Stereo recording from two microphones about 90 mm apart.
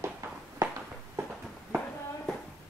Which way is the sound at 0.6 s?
35° right (ahead or behind).